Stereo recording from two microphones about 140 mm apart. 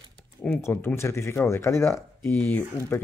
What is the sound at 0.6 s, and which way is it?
Speech, 20° left (ahead or behind).